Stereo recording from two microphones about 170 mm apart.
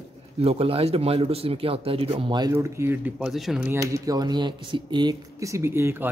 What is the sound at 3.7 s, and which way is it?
Speech, 20° right (ahead or behind).